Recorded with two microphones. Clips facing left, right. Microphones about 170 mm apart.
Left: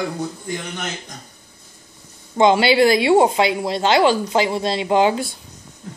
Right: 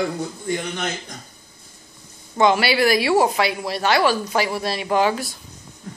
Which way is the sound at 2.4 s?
25° left (ahead or behind).